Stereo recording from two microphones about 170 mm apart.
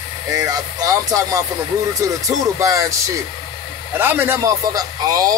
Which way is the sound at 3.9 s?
15° right (ahead or behind).